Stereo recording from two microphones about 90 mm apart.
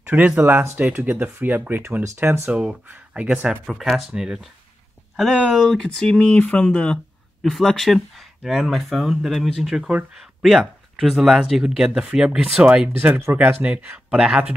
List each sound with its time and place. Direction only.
0.0 s speech: 15° right (ahead or behind)
2.5 s speech: 10° right (ahead or behind)